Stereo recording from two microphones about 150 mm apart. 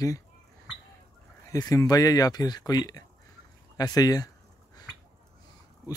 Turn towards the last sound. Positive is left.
turn(degrees=25)  # may be behind; listen again after turning